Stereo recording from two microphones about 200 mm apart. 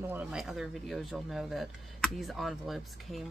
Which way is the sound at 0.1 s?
5° right (ahead or behind).